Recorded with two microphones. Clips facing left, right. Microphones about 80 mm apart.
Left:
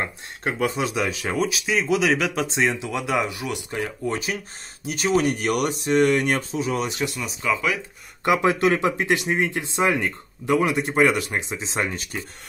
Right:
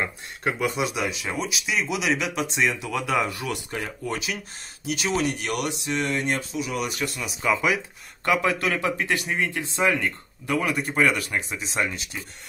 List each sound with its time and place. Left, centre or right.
0.4 s speech: left
2.8 s speech: centre
4.1 s speech: left
6.5 s speech: left
7.2 s speech: centre
8.2 s speech: left